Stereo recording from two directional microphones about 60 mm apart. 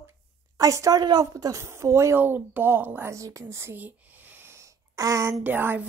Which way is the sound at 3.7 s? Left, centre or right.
Right.